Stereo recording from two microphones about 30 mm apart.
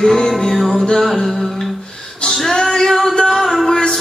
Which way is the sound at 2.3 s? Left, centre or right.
Centre.